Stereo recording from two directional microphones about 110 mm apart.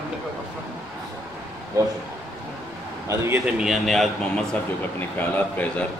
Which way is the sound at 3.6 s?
Centre (ahead or behind).